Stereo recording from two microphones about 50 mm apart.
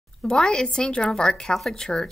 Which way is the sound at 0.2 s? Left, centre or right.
Centre.